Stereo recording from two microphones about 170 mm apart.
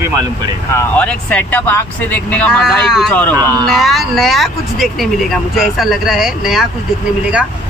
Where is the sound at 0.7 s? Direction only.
5° left (ahead or behind).